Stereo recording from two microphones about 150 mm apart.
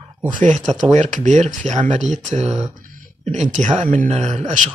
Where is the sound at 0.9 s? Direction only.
50° right (ahead or behind).